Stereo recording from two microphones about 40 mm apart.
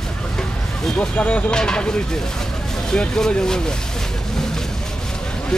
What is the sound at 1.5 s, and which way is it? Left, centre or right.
Speech, centre.